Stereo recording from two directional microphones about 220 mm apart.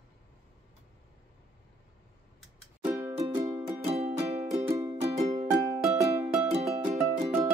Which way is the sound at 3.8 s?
30° right (ahead or behind).